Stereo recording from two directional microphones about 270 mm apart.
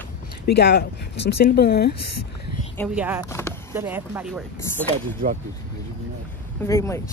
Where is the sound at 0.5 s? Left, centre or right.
Left.